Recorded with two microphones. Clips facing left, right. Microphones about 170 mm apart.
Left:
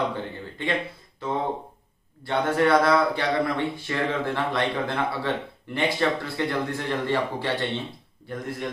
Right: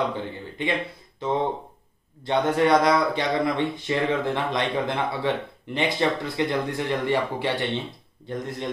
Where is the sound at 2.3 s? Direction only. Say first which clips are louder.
Right 1 dB; 15° right (ahead or behind).